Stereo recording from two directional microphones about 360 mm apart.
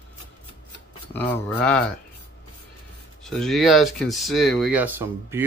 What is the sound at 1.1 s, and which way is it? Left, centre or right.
Speech, centre.